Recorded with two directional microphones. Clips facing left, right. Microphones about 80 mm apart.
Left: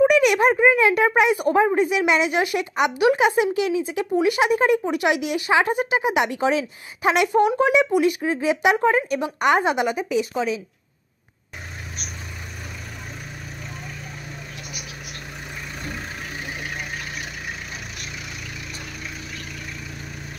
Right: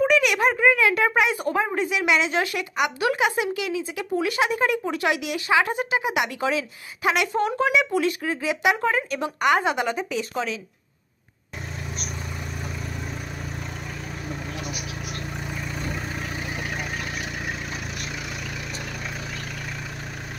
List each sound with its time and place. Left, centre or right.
0.0 s a woman's voice: left